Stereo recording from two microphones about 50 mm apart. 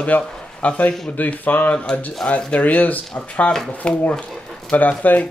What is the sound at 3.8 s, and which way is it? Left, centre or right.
Speech, left.